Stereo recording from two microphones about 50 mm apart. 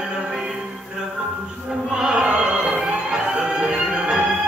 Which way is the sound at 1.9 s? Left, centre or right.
Centre.